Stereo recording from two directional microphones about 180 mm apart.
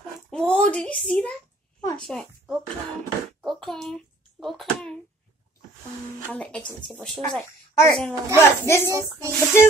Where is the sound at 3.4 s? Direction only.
Centre (ahead or behind).